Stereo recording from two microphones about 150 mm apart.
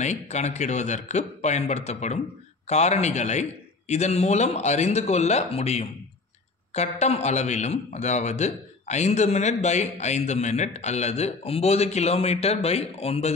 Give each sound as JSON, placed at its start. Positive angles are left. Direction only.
{"t": 0.0, "sound": "a man's voice", "side_deg": 50}